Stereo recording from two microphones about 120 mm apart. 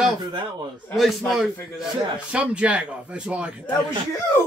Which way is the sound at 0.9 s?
Centre (ahead or behind).